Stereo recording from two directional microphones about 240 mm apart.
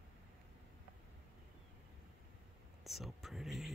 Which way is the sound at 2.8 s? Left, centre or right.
Centre.